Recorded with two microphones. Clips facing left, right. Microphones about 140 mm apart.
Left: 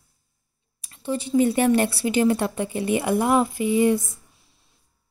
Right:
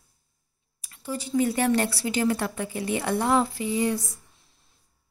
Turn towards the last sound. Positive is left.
turn(degrees=20)  # may be behind; listen again after turning